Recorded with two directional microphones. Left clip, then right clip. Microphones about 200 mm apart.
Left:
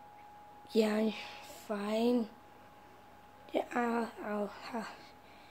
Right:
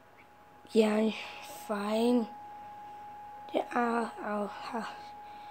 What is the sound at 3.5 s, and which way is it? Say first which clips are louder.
Speech: right 3 dB; 20° right (ahead or behind).